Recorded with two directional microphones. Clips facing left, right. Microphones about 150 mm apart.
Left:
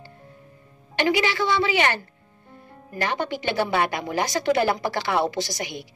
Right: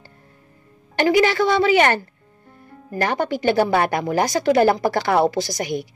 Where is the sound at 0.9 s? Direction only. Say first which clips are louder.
Right 6 dB; 45° right (ahead or behind).